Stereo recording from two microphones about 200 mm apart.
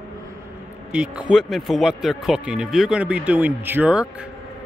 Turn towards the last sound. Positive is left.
turn(degrees=-5)  # may be behind; listen again after turning